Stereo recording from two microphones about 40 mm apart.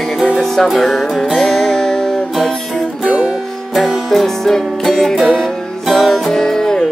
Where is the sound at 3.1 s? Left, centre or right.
Centre.